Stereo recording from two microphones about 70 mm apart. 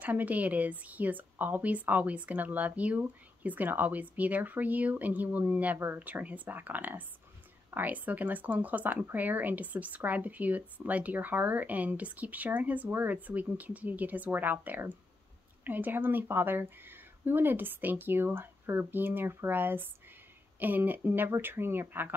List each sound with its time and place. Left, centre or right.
0.0 s speech: right